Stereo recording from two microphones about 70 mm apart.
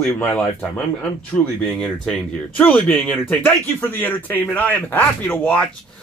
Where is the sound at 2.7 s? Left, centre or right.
Centre.